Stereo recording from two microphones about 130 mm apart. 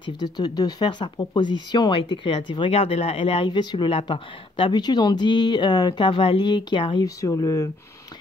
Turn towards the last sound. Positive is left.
turn(degrees=25)  # may be behind; listen again after turning